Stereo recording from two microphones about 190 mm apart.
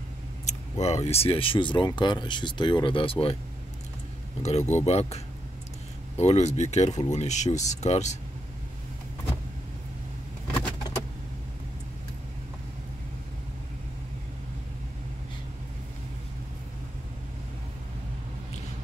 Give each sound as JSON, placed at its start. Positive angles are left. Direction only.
{"t": 0.5, "sound": "speech", "side_deg": 35}
{"t": 4.4, "sound": "speech", "side_deg": 35}